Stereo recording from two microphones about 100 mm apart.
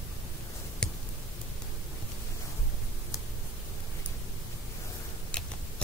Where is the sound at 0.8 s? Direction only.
10° left (ahead or behind).